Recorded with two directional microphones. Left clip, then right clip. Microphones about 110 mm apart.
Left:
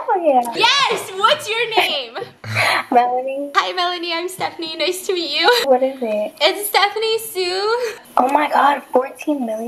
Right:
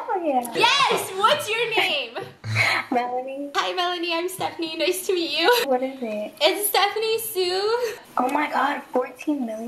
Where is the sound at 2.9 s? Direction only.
50° left (ahead or behind).